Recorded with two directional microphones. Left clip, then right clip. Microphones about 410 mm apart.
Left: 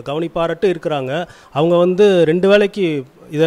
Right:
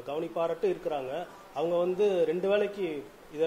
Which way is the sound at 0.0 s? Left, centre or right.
Left.